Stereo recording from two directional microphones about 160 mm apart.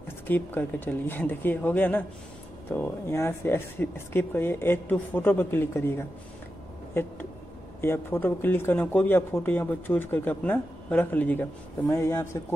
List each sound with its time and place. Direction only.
0.3 s speech: 10° left (ahead or behind)